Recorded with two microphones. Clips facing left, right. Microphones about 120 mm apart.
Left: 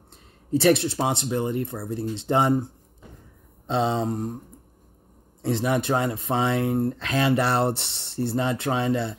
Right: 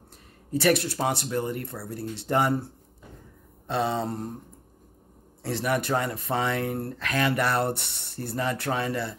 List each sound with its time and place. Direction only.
0.5 s speech: 25° left (ahead or behind)
5.4 s speech: 20° left (ahead or behind)